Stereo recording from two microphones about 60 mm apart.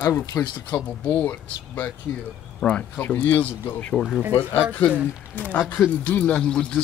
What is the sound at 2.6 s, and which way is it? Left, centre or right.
Speech, centre.